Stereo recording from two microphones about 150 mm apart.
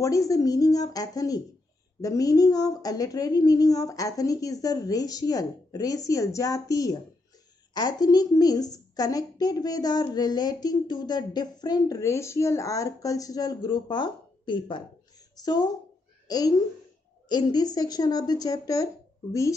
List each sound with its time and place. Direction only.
0.0 s a woman's voice: 20° left (ahead or behind)